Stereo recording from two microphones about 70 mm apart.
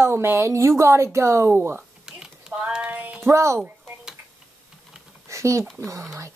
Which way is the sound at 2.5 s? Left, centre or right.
Centre.